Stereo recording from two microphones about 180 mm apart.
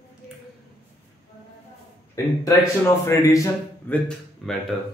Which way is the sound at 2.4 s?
15° left (ahead or behind).